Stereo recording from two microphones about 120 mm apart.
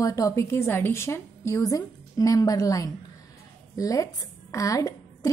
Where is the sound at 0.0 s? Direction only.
30° left (ahead or behind).